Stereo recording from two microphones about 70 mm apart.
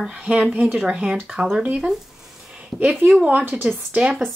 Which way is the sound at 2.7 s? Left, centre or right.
Centre.